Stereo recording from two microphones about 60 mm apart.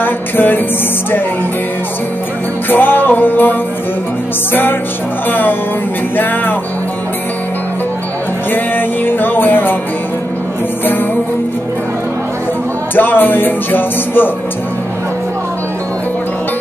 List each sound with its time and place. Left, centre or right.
0.0 s music: left
2.7 s speech: left
8.5 s speech: left
12.9 s speech: left